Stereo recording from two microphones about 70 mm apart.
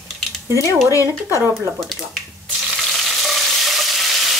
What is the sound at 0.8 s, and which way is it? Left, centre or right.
Speech, left.